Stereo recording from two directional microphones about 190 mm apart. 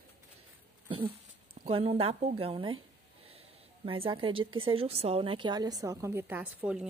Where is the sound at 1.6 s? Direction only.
30° right (ahead or behind).